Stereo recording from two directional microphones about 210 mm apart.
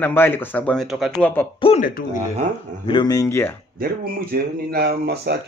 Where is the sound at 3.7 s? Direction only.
45° right (ahead or behind).